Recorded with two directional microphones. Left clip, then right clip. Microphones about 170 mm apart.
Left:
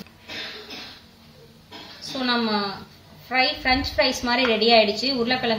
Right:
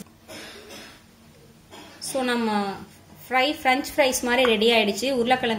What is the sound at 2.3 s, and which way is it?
A woman's voice, 55° right (ahead or behind).